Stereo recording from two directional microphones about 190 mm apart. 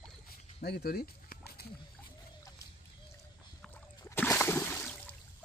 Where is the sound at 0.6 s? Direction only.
55° left (ahead or behind).